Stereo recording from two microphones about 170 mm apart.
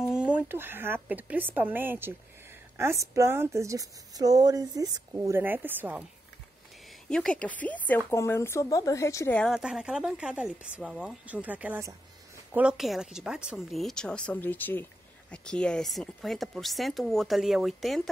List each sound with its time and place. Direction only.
0.1 s a woman's voice: 5° right (ahead or behind)
7.1 s speech: 5° left (ahead or behind)
9.4 s speech: 5° right (ahead or behind)